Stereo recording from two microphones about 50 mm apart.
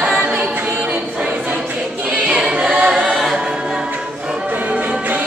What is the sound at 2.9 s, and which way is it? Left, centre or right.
Choir, centre.